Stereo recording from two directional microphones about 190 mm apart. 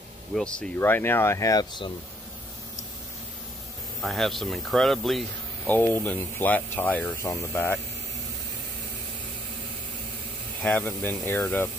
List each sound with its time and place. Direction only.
0.3 s speech: 5° left (ahead or behind); by 1.9 s 20° left (ahead or behind)
4.0 s speech: centre (ahead or behind)
10.6 s speech: 5° left (ahead or behind)